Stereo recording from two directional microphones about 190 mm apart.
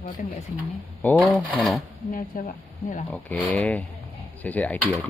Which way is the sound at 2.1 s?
45° left (ahead or behind).